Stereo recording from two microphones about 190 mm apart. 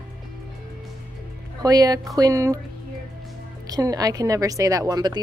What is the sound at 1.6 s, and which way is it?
Speech, 20° right (ahead or behind).